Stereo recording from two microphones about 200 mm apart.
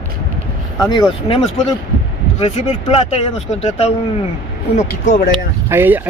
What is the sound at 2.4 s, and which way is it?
Speech, 30° left (ahead or behind).